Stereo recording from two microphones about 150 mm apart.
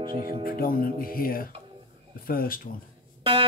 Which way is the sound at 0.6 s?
70° left (ahead or behind).